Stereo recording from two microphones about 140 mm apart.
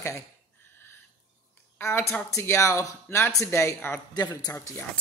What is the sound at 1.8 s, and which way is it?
Speech, 15° left (ahead or behind).